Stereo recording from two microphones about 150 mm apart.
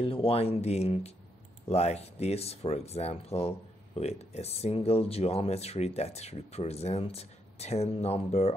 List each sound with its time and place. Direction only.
0.0 s speech: 40° left (ahead or behind)